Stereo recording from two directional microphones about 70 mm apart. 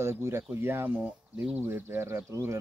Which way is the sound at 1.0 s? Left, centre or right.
Right.